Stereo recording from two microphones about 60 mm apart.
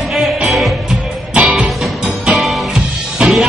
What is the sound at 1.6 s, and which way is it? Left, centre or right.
Music, centre.